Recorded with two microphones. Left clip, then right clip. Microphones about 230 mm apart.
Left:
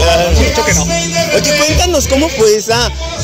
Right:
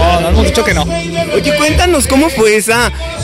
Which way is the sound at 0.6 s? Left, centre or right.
Right.